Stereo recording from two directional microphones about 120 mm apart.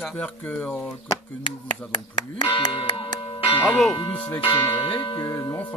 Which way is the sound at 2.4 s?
40° left (ahead or behind).